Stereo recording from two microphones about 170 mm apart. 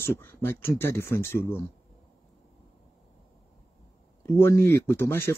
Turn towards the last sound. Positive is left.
turn(degrees=15)  # may be behind; listen again after turning